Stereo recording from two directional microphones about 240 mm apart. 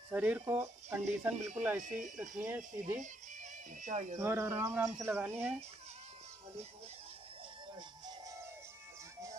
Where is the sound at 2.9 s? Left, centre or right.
Right.